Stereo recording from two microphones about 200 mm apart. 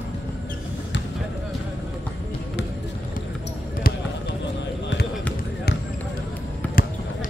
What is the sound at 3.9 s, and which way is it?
Basketball bounce, 45° left (ahead or behind).